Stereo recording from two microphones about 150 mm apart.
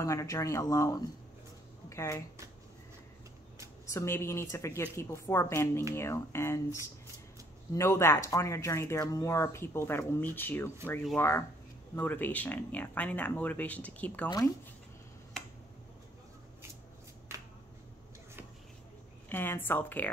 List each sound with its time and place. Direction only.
0.0 s speech: 20° left (ahead or behind)
3.9 s speech: 20° left (ahead or behind)
19.2 s speech: 15° left (ahead or behind)